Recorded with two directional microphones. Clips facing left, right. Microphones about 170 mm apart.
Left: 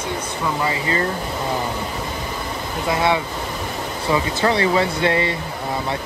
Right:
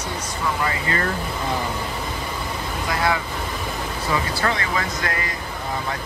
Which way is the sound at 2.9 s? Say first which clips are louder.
Left 3 dB; 25° left (ahead or behind).